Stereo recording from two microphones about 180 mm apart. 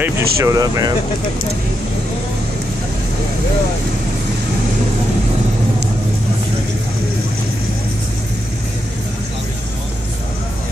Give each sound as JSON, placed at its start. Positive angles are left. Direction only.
{"t": 0.0, "sound": "speech", "side_deg": -15}